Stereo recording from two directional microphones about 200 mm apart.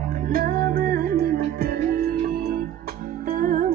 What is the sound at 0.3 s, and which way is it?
Music, 45° right (ahead or behind).